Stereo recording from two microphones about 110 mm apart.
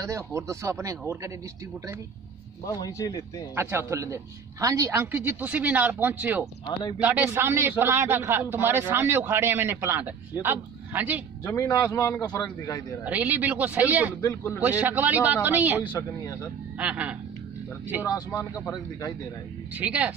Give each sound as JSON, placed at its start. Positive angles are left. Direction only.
{"t": 0.0, "sound": "a man's voice", "side_deg": -30}
{"t": 2.6, "sound": "speech", "side_deg": 35}
{"t": 3.5, "sound": "a man's voice", "side_deg": -25}
{"t": 5.0, "sound": "speech", "side_deg": -20}
{"t": 6.6, "sound": "speech", "side_deg": 45}
{"t": 7.0, "sound": "a man's voice", "side_deg": -15}
{"t": 11.4, "sound": "a man's voice", "side_deg": 25}
{"t": 13.0, "sound": "speech", "side_deg": -15}
{"t": 14.2, "sound": "a man's voice", "side_deg": 25}
{"t": 14.6, "sound": "speech", "side_deg": -15}
{"t": 15.9, "sound": "a man's voice", "side_deg": 25}
{"t": 16.7, "sound": "speech", "side_deg": -10}
{"t": 18.0, "sound": "a man's voice", "side_deg": 30}
{"t": 19.7, "sound": "speech", "side_deg": -15}